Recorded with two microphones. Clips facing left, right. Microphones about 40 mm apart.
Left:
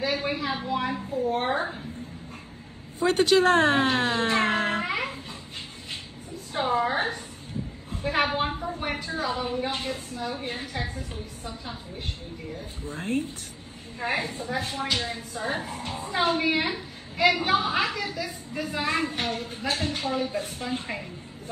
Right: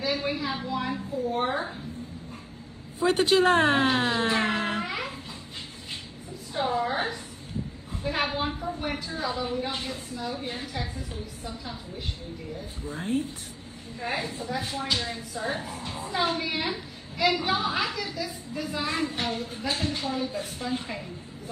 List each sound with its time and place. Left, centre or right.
0.0 s a sound: left
3.0 s speech: centre
3.4 s speech: right
3.9 s speech: left
6.5 s a woman's voice: left
7.9 s a woman's voice: left
8.5 s a sound: centre
8.7 s a woman's voice: left
13.9 s a woman's voice: left